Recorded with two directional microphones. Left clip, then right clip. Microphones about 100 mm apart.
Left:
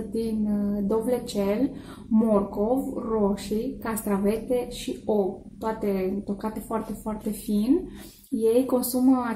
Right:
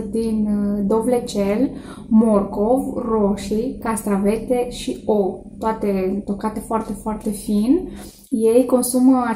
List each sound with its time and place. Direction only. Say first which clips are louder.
0.1 s a woman's voice: right 6 dB; 5° left (ahead or behind)